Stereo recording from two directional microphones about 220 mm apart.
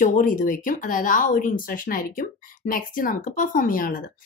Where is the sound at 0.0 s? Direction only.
40° left (ahead or behind).